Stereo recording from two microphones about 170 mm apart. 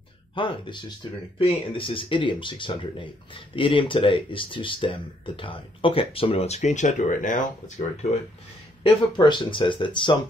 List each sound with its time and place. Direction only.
0.3 s speech: 30° left (ahead or behind); by 8.2 s 45° left (ahead or behind)
8.8 s speech: 25° left (ahead or behind)